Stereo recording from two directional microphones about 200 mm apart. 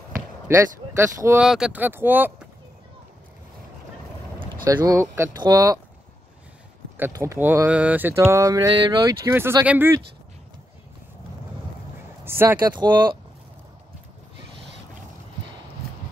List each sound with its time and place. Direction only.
0.5 s speech: 15° right (ahead or behind)
4.6 s speech: 15° right (ahead or behind)
7.0 s speech: 15° right (ahead or behind)
12.3 s a sound: 10° right (ahead or behind)
12.5 s speech: 20° right (ahead or behind)